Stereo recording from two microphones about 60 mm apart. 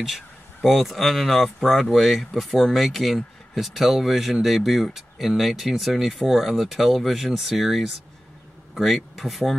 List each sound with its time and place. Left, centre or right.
0.7 s speech: centre